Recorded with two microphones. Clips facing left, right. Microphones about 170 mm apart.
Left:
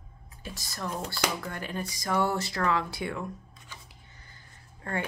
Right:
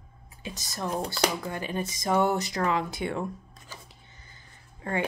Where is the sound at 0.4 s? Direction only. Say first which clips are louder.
Right 3 dB; 20° right (ahead or behind).